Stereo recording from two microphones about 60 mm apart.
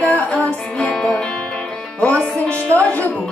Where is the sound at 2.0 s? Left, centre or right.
Left.